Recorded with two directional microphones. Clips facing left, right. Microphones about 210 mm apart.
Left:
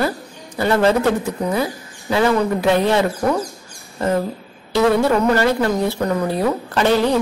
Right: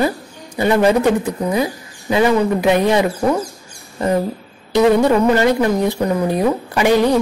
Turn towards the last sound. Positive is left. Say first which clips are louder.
# right 2 dB
turn(degrees=-15)  # may be behind; listen again after turning